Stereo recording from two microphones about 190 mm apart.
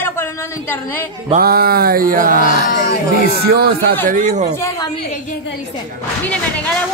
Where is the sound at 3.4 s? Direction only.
55° right (ahead or behind).